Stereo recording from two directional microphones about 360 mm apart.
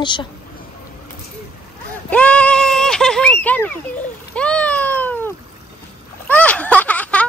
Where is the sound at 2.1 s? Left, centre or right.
Centre.